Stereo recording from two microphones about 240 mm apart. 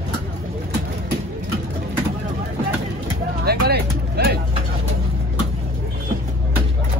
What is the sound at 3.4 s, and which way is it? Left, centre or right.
Music, right.